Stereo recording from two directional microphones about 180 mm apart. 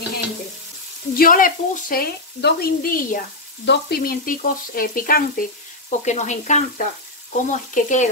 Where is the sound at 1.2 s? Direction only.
50° left (ahead or behind).